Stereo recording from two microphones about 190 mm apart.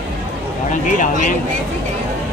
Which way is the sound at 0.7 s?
40° left (ahead or behind).